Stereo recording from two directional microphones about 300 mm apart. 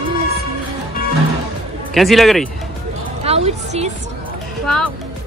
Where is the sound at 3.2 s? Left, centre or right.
Centre.